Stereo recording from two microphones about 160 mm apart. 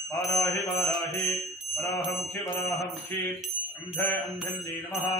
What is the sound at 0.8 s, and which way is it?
Mantra, 20° left (ahead or behind).